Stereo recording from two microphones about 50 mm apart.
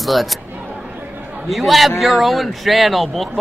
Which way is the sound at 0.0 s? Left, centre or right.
Centre.